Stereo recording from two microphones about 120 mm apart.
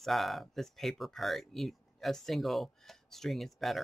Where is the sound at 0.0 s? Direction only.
Centre (ahead or behind).